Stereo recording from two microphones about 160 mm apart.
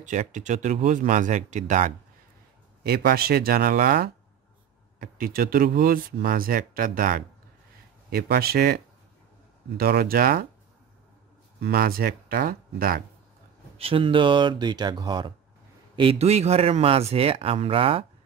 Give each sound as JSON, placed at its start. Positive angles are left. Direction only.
{"t": 0.0, "sound": "speech", "side_deg": -50}
{"t": 2.8, "sound": "speech", "side_deg": -75}
{"t": 8.1, "sound": "speech", "side_deg": -75}
{"t": 11.6, "sound": "speech", "side_deg": -70}
{"t": 13.7, "sound": "speech", "side_deg": -35}
{"t": 16.0, "sound": "speech", "side_deg": -40}